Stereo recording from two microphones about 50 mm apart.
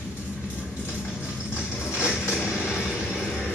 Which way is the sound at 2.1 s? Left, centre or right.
Centre.